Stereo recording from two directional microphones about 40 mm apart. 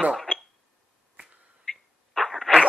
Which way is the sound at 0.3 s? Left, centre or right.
Left.